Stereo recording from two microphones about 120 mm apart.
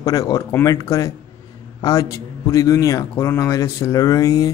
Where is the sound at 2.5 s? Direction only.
30° left (ahead or behind).